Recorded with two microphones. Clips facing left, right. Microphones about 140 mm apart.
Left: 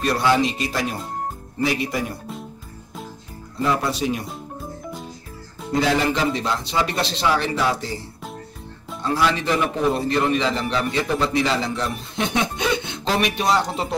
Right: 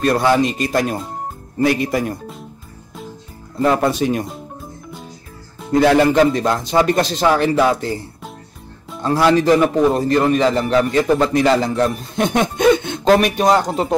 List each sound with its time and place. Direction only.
0.0 s a man's voice: 50° right (ahead or behind)
3.6 s a man's voice: 50° right (ahead or behind)
5.7 s a man's voice: 50° right (ahead or behind)
9.0 s a man's voice: 40° right (ahead or behind)